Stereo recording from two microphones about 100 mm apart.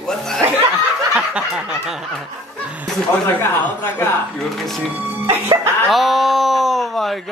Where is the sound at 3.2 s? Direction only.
25° left (ahead or behind).